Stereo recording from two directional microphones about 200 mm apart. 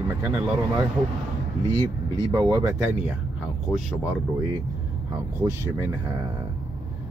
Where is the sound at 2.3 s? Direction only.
15° right (ahead or behind).